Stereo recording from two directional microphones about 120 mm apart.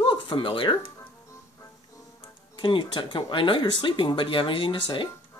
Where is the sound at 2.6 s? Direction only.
45° left (ahead or behind).